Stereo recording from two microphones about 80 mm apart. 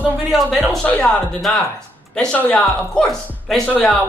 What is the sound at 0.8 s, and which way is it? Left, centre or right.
Speech, centre.